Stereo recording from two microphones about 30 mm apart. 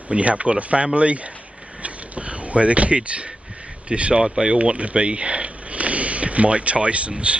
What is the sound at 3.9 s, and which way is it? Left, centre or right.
Speech, right.